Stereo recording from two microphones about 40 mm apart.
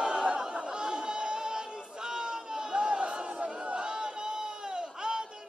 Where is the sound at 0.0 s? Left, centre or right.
Right.